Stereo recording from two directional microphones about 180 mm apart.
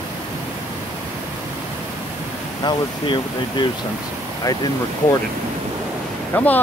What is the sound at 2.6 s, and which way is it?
Speech, 25° left (ahead or behind).